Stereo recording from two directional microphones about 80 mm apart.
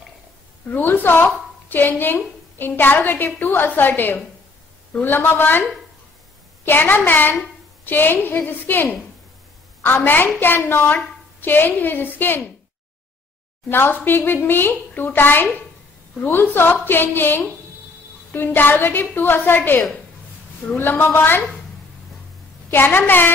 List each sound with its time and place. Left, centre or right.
0.7 s a woman's voice: left
13.7 s a woman's voice: left
22.7 s a woman's voice: left